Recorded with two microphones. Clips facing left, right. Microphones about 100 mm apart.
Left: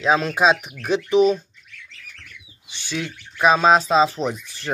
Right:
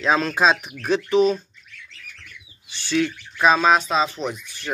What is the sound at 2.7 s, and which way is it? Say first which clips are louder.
Bird: right 5 dB; 15° left (ahead or behind).